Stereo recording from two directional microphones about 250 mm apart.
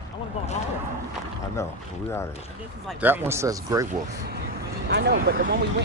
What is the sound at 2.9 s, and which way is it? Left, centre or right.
Speech, centre.